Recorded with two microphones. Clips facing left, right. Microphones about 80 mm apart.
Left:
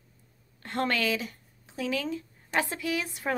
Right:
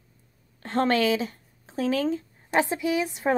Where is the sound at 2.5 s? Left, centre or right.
Right.